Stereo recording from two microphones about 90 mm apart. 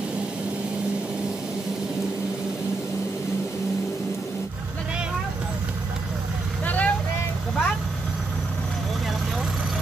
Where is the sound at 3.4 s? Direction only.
5° right (ahead or behind).